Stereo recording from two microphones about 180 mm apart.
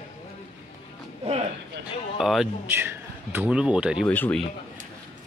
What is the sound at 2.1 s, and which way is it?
A man's voice, centre (ahead or behind).